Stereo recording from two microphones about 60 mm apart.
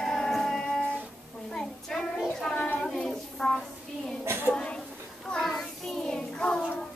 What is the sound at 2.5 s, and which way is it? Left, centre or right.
Child singing, left.